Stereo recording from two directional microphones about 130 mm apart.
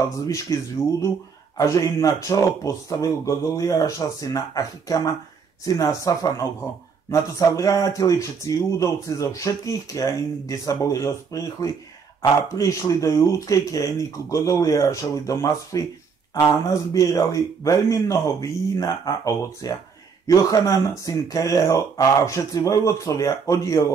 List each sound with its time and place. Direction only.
0.3 s a man's voice: 25° left (ahead or behind)